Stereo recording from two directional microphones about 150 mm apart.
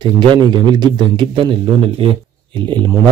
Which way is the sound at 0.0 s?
30° right (ahead or behind).